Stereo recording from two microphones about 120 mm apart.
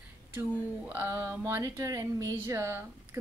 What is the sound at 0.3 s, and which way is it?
A woman's voice, 15° right (ahead or behind).